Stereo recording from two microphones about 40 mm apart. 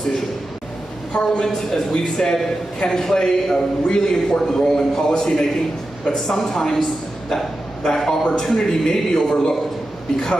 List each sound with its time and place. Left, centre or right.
1.1 s a man's voice: centre